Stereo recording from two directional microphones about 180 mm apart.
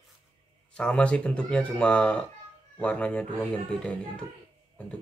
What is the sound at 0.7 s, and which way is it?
Speech, 5° left (ahead or behind).